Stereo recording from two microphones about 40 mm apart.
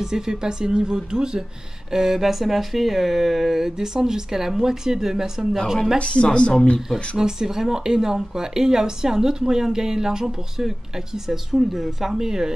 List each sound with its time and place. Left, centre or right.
0.0 s speech: centre
5.9 s speech: left
6.9 s speech: centre